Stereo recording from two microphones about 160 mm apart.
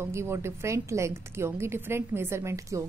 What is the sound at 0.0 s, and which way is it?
A woman's voice, 15° right (ahead or behind).